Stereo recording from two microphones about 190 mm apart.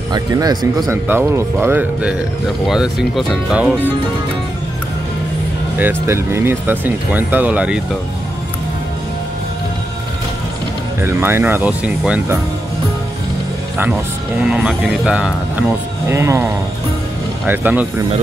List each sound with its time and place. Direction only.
0.1 s speech: 20° right (ahead or behind)
5.8 s speech: 10° right (ahead or behind)
11.0 s speech: 10° right (ahead or behind)
14.4 s speech: 5° right (ahead or behind)